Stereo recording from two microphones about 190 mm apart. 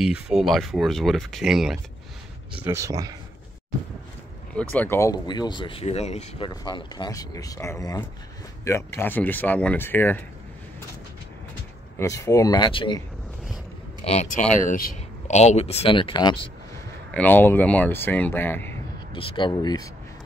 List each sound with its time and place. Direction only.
0.0 s speech: 5° right (ahead or behind)
2.6 s speech: 15° right (ahead or behind)
4.6 s speech: 10° left (ahead or behind); by 6.5 s 35° left (ahead or behind)
6.5 s speech: 20° left (ahead or behind)
12.0 s speech: 15° left (ahead or behind)
14.0 s speech: 35° left (ahead or behind)
14.6 s speech: 45° left (ahead or behind); by 16.4 s 25° left (ahead or behind)
17.1 s speech: 10° left (ahead or behind)
19.1 s speech: 25° left (ahead or behind)